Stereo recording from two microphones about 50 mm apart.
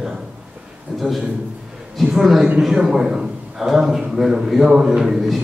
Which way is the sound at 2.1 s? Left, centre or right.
Centre.